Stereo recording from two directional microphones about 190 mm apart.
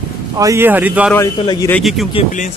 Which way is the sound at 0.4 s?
15° right (ahead or behind).